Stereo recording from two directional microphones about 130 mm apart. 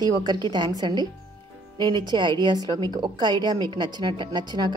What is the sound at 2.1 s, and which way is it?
A woman's voice, 35° right (ahead or behind).